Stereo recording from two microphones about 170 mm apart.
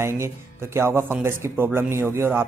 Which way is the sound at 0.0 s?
15° right (ahead or behind).